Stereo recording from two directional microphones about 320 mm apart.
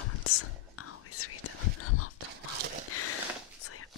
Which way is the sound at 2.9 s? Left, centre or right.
Left.